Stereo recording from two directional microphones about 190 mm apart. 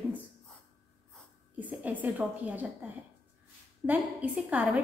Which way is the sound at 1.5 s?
10° right (ahead or behind).